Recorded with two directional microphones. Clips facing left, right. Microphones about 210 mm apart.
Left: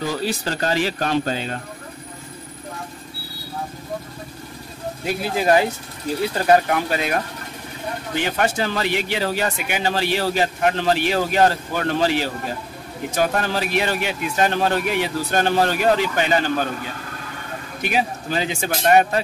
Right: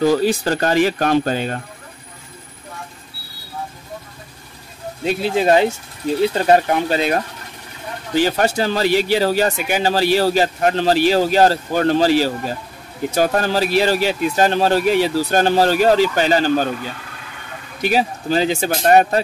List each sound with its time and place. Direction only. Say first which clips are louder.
0.0 s speech: right 8 dB; 50° right (ahead or behind)
5.0 s speech: right 4 dB; 25° right (ahead or behind)
8.2 s speech: right 5 dB; 35° right (ahead or behind)
17.8 s speech: right 5 dB; 35° right (ahead or behind)